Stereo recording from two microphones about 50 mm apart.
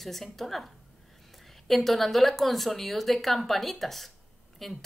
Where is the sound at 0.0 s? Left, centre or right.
Centre.